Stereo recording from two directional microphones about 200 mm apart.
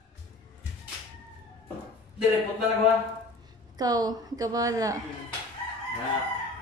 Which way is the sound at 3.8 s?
20° right (ahead or behind).